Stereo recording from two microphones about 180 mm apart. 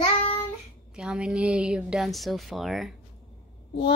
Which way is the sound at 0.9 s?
5° right (ahead or behind).